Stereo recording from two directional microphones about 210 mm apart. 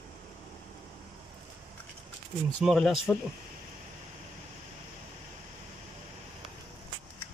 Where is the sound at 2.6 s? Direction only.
Centre (ahead or behind).